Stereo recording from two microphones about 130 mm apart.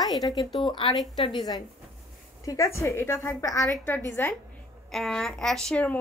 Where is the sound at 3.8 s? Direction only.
15° left (ahead or behind).